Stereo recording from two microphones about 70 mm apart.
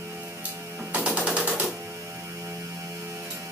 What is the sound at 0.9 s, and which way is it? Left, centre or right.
Machine gun, centre.